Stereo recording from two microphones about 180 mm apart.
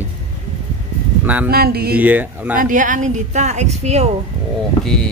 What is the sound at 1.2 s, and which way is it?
Speech, 10° right (ahead or behind).